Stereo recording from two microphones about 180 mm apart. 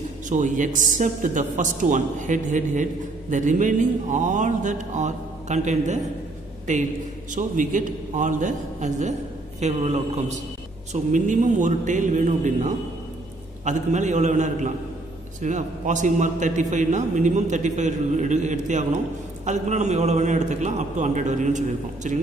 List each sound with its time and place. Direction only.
0.3 s a man's voice: 45° right (ahead or behind)